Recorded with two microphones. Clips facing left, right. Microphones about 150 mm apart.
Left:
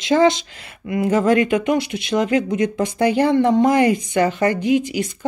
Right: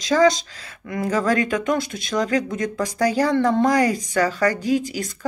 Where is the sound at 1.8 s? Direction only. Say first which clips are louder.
Left 3 dB; 45° right (ahead or behind).